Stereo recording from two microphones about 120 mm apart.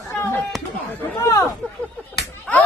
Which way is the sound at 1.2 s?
25° left (ahead or behind).